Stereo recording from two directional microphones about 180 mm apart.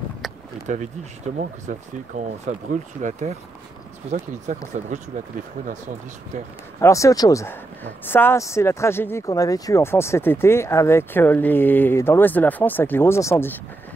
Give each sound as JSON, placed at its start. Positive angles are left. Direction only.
{"t": 0.7, "sound": "speech", "side_deg": -40}
{"t": 6.8, "sound": "speech", "side_deg": 15}